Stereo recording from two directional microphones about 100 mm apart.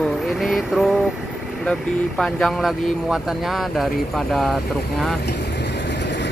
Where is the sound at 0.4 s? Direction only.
Centre (ahead or behind).